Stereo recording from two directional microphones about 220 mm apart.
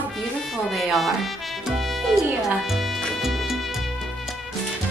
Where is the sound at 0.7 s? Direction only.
Centre (ahead or behind).